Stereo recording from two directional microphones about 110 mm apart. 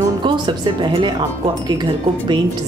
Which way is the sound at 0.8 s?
45° right (ahead or behind).